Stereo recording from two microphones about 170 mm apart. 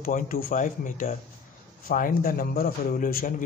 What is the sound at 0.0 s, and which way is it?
A man's voice, 55° left (ahead or behind).